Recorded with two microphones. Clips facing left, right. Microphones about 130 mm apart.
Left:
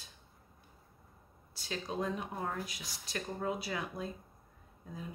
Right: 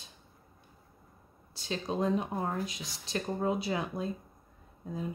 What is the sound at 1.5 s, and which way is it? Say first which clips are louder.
Speech: right 5 dB; 25° right (ahead or behind).